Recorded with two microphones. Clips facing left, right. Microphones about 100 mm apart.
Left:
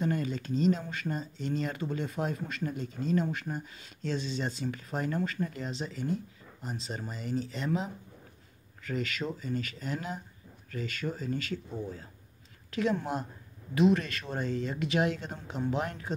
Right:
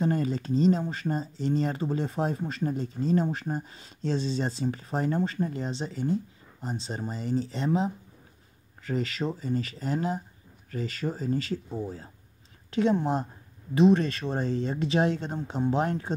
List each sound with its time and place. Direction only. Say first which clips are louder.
0.0 s speech: right 4 dB; 35° right (ahead or behind)